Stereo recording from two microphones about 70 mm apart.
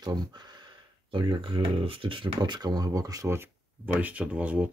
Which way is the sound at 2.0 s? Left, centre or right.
Right.